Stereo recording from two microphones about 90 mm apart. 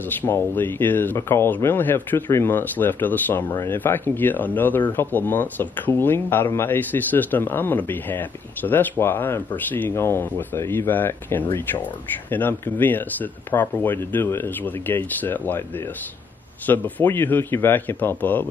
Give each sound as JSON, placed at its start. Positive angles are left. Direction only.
{"t": 0.2, "sound": "speech", "side_deg": 25}
{"t": 16.6, "sound": "speech", "side_deg": 20}